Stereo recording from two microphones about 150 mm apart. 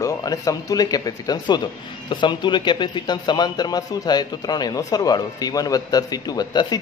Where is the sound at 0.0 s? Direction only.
25° left (ahead or behind).